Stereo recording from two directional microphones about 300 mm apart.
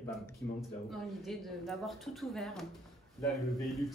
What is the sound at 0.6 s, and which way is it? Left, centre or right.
Speech, centre.